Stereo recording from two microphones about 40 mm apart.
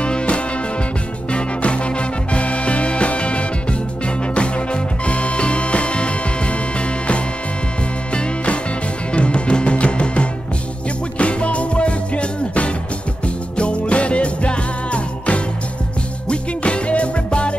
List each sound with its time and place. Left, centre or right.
0.0 s music: left